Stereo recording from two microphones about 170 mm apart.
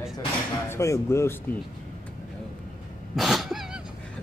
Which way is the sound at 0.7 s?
15° left (ahead or behind).